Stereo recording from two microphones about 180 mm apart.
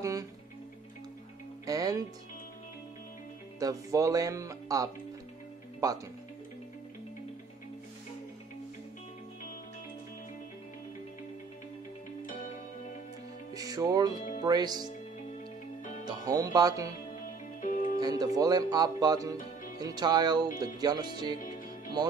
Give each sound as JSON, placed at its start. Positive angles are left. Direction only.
{"t": 0.0, "sound": "music", "side_deg": -20}
{"t": 1.7, "sound": "speech", "side_deg": -20}
{"t": 3.5, "sound": "speech", "side_deg": -20}
{"t": 13.6, "sound": "speech", "side_deg": -20}
{"t": 16.1, "sound": "speech", "side_deg": -20}
{"t": 17.6, "sound": "music", "side_deg": 45}
{"t": 18.0, "sound": "speech", "side_deg": -20}
{"t": 19.3, "sound": "music", "side_deg": 50}
{"t": 19.8, "sound": "speech", "side_deg": -20}